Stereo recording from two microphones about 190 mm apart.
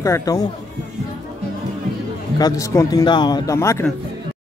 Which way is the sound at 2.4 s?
15° left (ahead or behind).